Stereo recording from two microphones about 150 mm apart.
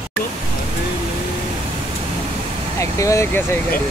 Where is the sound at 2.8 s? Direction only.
20° left (ahead or behind).